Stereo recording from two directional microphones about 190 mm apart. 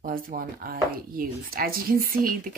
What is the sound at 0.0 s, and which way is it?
Speech, 50° right (ahead or behind).